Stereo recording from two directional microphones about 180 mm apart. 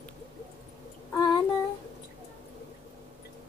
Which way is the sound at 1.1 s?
20° left (ahead or behind).